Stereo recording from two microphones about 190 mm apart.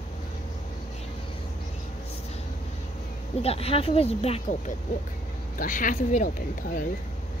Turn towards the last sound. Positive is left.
turn(degrees=45)  # may be behind; listen again after turning